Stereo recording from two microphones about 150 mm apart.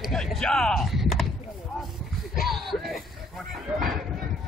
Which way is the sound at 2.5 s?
Centre (ahead or behind).